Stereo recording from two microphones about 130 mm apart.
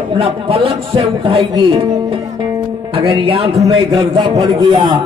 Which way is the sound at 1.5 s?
40° right (ahead or behind).